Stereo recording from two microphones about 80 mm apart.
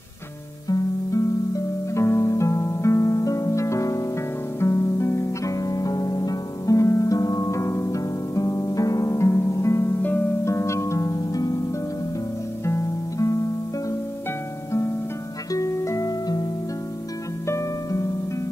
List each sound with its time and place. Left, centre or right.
0.7 s music: left
10.4 s harp: left
12.6 s music: left
15.5 s music: left
17.5 s music: left